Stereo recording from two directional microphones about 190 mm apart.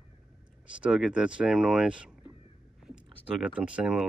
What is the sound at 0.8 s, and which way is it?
Speech, 5° right (ahead or behind).